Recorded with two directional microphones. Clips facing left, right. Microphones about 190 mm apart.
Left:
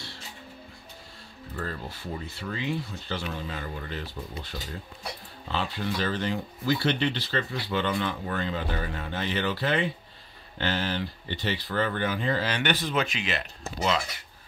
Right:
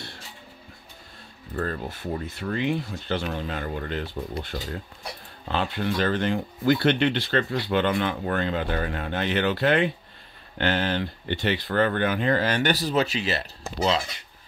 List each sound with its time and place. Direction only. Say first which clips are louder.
2.3 s speech: right 5 dB; 55° right (ahead or behind); by 14.2 s 30° right (ahead or behind)